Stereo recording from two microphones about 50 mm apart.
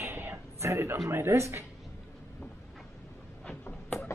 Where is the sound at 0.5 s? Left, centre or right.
Right.